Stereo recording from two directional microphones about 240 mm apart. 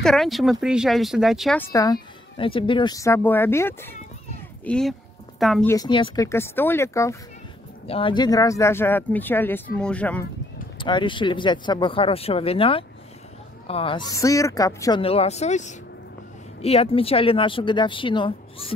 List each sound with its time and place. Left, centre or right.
0.0 s speech: centre
1.7 s speech: centre
5.7 s speech: centre
7.8 s speech: left; by 10.2 s centre
10.8 s speech: centre